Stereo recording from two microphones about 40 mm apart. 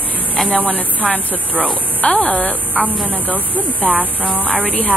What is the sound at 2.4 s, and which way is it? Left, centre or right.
Speech, left.